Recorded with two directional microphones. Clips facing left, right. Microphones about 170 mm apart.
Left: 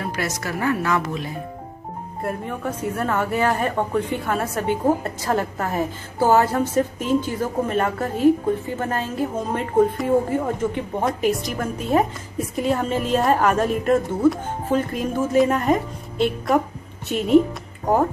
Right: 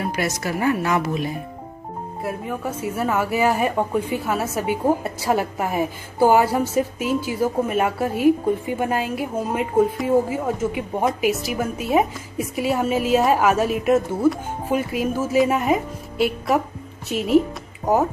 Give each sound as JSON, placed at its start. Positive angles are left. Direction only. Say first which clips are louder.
{"t": 0.1, "sound": "a woman's voice", "louder": "right 2 dB", "side_deg": -15}